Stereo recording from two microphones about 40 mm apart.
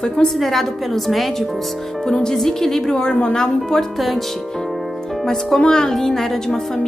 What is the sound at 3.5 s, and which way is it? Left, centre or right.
Speech, centre.